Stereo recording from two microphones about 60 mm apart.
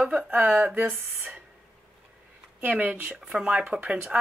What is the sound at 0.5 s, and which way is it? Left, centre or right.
Speech, right.